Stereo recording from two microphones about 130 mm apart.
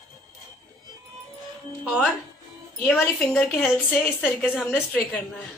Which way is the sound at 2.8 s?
15° left (ahead or behind).